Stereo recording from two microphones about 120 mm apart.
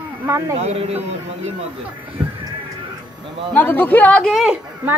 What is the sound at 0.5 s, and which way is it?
Speech, 60° right (ahead or behind).